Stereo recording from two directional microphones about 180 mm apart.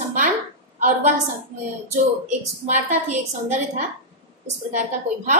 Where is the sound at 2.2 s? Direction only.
45° right (ahead or behind).